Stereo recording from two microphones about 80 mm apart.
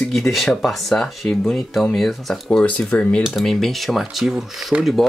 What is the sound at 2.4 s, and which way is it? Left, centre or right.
Speech, centre.